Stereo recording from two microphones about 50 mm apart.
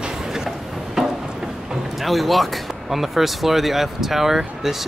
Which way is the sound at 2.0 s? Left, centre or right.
Centre.